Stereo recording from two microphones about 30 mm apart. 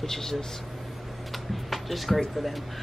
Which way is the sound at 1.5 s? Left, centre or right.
Centre.